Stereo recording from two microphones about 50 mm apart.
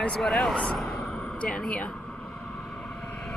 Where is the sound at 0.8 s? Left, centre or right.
Centre.